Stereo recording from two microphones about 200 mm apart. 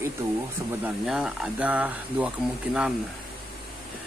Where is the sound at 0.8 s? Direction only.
5° right (ahead or behind).